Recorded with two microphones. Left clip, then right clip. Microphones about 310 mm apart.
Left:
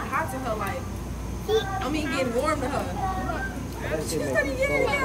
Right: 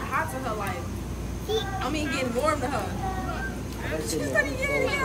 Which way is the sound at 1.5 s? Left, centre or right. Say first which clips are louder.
Left 4 dB; left.